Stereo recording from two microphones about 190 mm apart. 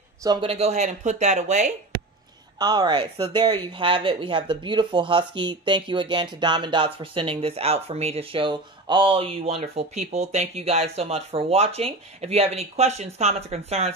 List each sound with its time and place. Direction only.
0.2 s speech: 25° right (ahead or behind)
2.6 s speech: 20° right (ahead or behind)